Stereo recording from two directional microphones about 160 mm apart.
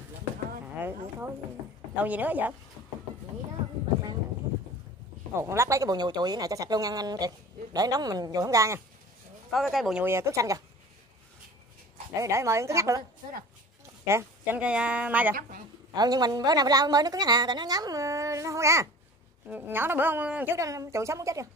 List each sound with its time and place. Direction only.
0.7 s a woman's voice: 15° right (ahead or behind)
5.3 s speech: 15° right (ahead or behind)
9.5 s speech: centre (ahead or behind)
10.0 s speech: 15° right (ahead or behind)
12.2 s a woman's voice: 20° right (ahead or behind)
14.0 s a woman's voice: 15° right (ahead or behind)
15.9 s a woman's voice: 25° right (ahead or behind)